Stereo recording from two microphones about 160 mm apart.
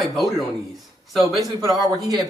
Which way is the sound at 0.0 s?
Centre (ahead or behind).